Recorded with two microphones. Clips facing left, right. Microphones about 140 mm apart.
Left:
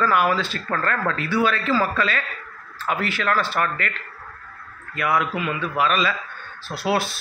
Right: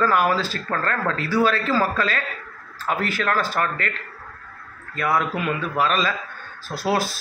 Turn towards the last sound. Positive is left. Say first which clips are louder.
# even
turn(degrees=-40)  # may be behind; listen again after turning